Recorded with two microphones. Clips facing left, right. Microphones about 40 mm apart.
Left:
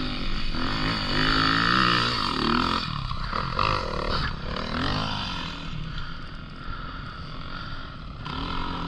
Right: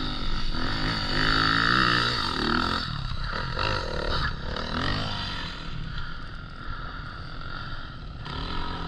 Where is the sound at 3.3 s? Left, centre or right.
Left.